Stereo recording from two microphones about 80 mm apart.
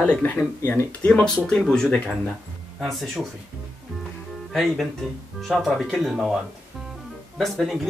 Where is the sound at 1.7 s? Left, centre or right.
Centre.